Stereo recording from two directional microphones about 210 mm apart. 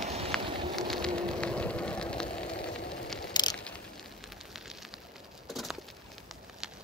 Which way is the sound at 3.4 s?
20° left (ahead or behind).